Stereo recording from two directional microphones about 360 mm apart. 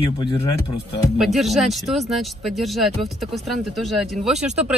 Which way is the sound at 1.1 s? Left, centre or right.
Centre.